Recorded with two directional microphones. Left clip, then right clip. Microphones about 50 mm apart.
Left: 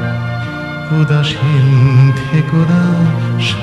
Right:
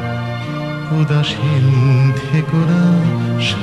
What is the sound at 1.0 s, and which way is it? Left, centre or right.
Music, centre.